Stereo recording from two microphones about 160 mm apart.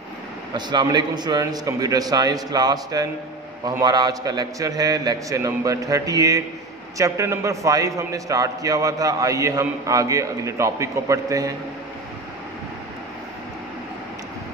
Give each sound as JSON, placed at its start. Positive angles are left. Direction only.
{"t": 0.6, "sound": "a man's voice", "side_deg": -25}